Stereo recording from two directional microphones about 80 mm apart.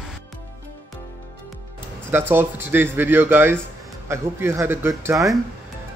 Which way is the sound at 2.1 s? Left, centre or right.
Right.